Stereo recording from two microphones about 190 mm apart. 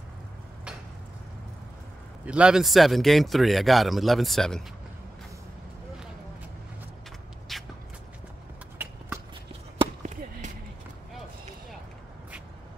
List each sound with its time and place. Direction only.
2.2 s a man's voice: 5° right (ahead or behind)
7.5 s shuffle: centre (ahead or behind)
8.8 s clip-clop: 10° right (ahead or behind)
9.8 s chop: 40° right (ahead or behind)